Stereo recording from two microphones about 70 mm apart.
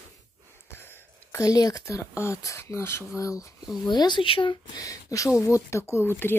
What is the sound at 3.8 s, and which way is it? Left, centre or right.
Speech, left.